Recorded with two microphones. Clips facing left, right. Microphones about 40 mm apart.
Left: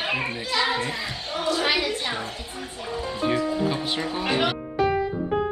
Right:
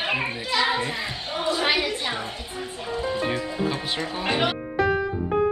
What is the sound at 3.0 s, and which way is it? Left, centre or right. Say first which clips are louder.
Music: left 2 dB; centre.